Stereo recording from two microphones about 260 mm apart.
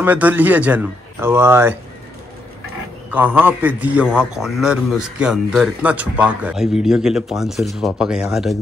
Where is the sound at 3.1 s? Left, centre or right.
Centre.